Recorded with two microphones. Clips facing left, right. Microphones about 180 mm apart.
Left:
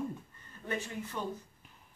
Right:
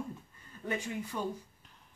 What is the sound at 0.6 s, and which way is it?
Speech, 10° right (ahead or behind).